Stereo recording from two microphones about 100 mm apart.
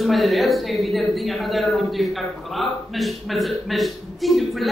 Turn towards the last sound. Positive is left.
turn(degrees=0)  # may be behind; listen again after turning